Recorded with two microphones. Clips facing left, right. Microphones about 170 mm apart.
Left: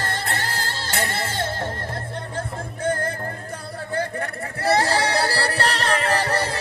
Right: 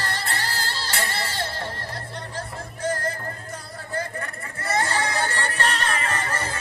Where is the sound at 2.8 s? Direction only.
60° left (ahead or behind).